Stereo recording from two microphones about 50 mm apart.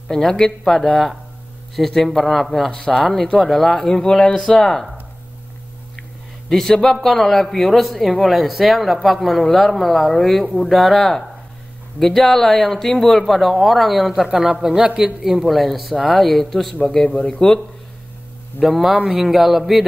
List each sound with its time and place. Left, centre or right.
0.1 s speech: centre
6.5 s a man's voice: centre
15.2 s speech: centre
17.1 s speech: left
18.6 s speech: centre